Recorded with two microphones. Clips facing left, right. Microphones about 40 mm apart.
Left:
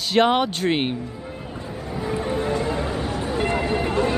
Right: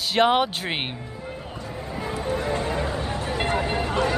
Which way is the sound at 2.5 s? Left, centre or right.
Right.